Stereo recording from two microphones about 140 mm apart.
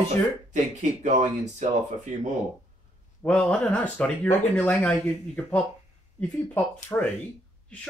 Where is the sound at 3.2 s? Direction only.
10° left (ahead or behind).